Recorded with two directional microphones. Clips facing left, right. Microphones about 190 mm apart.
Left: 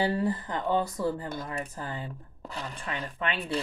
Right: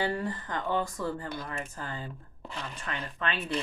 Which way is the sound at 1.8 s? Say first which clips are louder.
Left 2 dB; 20° left (ahead or behind).